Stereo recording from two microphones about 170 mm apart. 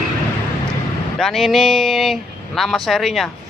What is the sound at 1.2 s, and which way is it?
Speech, centre (ahead or behind).